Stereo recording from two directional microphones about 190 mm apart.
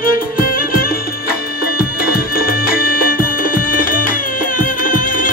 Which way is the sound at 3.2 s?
45° left (ahead or behind).